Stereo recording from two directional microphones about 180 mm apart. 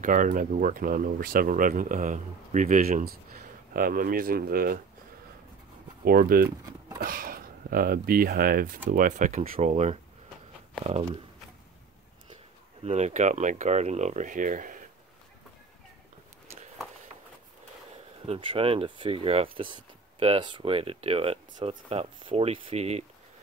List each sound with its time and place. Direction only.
0.0 s speech: 45° right (ahead or behind)
6.0 s speech: 55° right (ahead or behind); by 11.2 s 30° right (ahead or behind)
12.8 s speech: 40° right (ahead or behind)
18.2 s speech: 30° right (ahead or behind)